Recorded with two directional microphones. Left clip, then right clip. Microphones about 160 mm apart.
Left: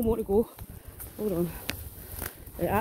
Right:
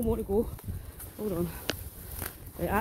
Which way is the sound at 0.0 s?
40° left (ahead or behind).